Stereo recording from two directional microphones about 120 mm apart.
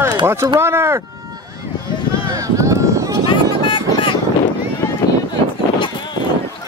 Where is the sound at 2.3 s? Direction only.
25° right (ahead or behind).